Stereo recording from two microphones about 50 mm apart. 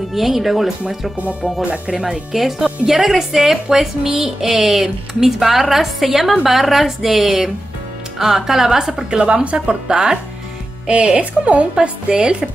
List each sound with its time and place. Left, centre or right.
0.1 s a woman's voice: centre
1.7 s a woman's voice: centre
2.0 s a woman's voice: centre; by 12.4 s right